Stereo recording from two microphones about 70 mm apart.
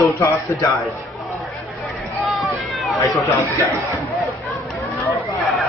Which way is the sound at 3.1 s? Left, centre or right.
Left.